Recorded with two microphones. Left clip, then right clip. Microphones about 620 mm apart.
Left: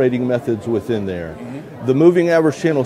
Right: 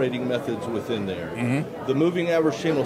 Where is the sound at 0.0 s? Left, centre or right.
Left.